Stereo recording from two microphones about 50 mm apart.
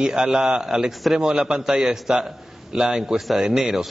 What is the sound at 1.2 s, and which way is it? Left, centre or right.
A man's voice, centre.